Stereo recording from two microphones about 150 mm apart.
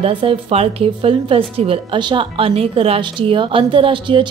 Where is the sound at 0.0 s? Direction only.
35° right (ahead or behind).